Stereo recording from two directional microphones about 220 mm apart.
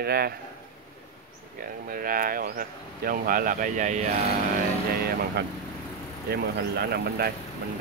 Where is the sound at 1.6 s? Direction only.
40° right (ahead or behind).